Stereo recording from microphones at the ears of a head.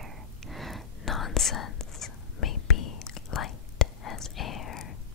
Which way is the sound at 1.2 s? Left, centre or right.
Left.